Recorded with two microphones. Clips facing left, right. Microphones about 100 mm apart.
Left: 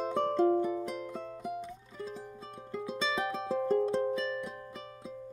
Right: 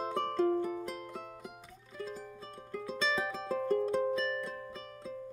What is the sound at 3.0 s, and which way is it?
Music, 10° left (ahead or behind).